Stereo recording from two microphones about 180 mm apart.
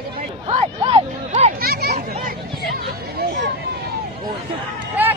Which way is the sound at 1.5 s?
60° right (ahead or behind).